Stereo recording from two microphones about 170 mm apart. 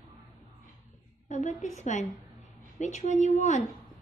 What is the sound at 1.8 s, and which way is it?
A woman's voice, 45° left (ahead or behind).